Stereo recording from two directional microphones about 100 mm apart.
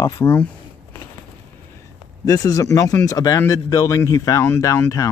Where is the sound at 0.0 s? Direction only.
40° left (ahead or behind).